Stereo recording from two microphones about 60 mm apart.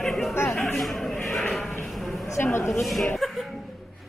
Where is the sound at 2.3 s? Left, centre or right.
Left.